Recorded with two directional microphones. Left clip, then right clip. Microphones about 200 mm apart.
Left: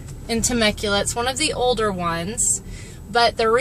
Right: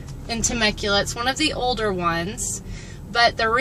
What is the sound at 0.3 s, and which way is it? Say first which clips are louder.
A woman's voice: left 2 dB; 15° left (ahead or behind).